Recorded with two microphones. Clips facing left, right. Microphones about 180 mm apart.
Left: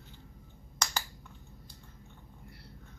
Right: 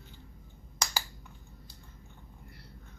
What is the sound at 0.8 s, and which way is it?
Finger snapping, 10° right (ahead or behind).